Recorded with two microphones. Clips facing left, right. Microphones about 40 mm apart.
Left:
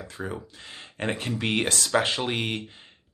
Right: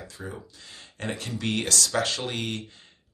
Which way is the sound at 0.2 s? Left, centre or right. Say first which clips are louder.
Left 6 dB; left.